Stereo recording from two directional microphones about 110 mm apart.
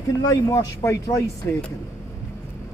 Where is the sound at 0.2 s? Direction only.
30° left (ahead or behind).